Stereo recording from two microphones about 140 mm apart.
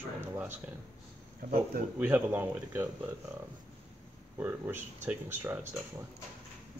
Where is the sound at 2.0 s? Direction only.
15° right (ahead or behind).